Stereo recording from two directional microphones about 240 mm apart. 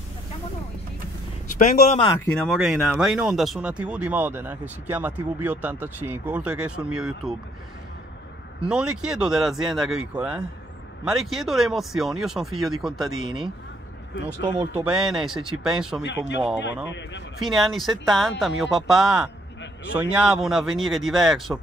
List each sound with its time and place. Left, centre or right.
1.6 s speech: left
2.1 s speech: centre
8.6 s speech: centre
14.4 s speech: centre
14.9 s speech: centre
17.4 s speech: centre